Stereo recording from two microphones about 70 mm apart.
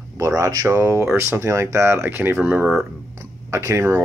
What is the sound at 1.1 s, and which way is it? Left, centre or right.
Speech, right.